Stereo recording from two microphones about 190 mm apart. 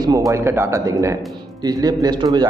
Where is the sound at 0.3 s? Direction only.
15° right (ahead or behind).